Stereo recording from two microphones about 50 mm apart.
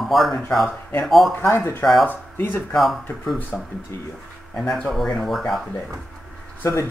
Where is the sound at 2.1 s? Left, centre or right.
Left.